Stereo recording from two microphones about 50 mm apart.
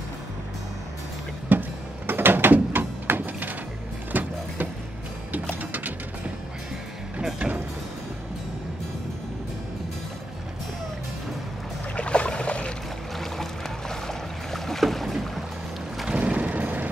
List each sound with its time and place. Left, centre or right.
1.5 s vehicle: right
2.0 s a sound: right
4.1 s music: right
11.9 s boat: left
13.1 s boat: centre
16.1 s a sound: right